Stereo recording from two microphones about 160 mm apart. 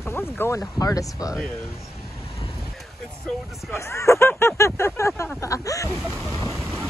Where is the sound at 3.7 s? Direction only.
20° left (ahead or behind).